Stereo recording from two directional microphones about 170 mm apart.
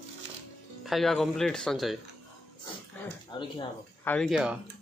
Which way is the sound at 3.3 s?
25° left (ahead or behind).